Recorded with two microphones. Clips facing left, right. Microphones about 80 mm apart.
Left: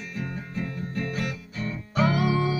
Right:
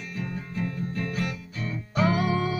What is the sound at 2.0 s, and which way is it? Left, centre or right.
Music, right.